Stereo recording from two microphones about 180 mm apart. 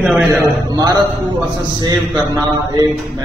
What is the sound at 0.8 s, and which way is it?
Speech, 20° right (ahead or behind).